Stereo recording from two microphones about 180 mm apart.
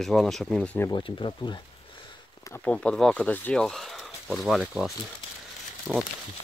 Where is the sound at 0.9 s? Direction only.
30° left (ahead or behind).